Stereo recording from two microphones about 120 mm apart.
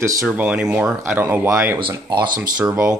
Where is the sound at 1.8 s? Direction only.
40° right (ahead or behind).